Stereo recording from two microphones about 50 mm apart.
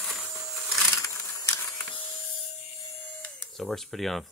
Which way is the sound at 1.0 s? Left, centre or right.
Left.